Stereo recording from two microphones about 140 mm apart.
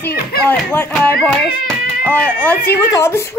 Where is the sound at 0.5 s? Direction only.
15° left (ahead or behind).